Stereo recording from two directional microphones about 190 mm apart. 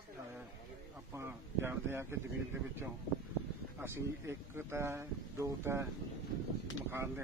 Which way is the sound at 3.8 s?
10° right (ahead or behind).